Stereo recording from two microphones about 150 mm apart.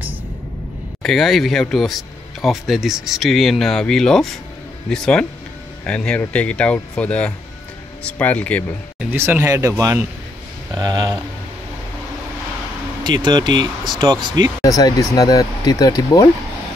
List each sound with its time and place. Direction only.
1.0 s speech: centre (ahead or behind)
9.1 s speech: 15° right (ahead or behind)
13.0 s speech: 30° right (ahead or behind)
14.6 s speech: 25° left (ahead or behind)